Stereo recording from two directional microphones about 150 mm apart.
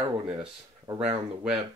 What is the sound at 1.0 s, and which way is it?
Speech, 5° right (ahead or behind).